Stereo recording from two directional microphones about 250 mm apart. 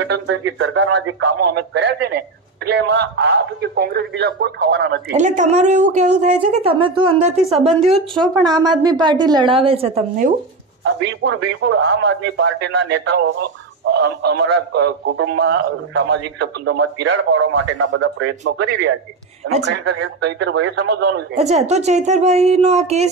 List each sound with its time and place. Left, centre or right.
0.0 s speech: right
5.1 s speech: right
7.4 s speech: centre
8.5 s speech: centre
11.2 s speech: right
21.4 s speech: right